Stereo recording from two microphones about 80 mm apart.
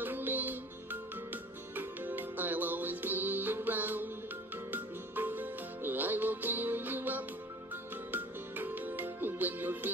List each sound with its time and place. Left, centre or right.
0.0 s music: right